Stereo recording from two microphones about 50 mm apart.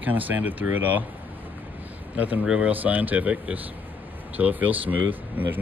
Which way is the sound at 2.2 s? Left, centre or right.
Right.